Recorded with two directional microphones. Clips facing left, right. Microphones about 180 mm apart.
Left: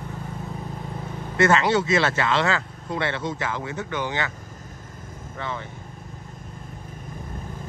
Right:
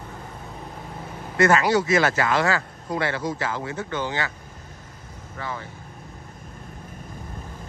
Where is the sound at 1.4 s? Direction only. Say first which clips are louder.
Right 1 dB; 25° left (ahead or behind).